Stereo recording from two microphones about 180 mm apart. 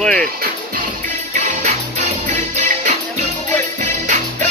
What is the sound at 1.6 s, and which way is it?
Music, 40° right (ahead or behind).